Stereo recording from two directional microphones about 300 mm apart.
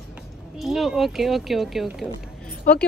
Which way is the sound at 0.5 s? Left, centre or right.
Centre.